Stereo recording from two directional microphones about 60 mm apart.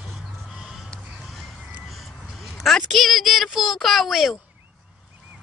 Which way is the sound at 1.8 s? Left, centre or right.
Centre.